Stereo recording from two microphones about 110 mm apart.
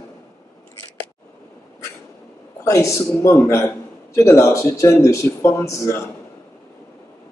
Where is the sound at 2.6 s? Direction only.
30° left (ahead or behind).